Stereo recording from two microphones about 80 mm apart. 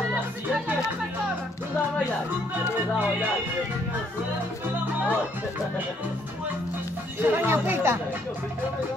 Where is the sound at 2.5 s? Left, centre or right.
Right.